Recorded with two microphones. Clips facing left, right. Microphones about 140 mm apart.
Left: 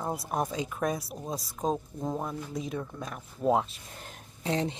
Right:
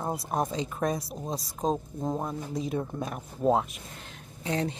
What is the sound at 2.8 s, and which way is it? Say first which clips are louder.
Speech: right 5 dB; 35° right (ahead or behind).